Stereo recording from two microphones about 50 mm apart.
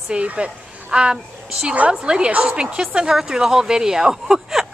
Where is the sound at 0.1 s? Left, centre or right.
Right.